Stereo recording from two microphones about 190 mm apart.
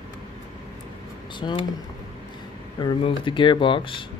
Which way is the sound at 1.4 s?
25° left (ahead or behind).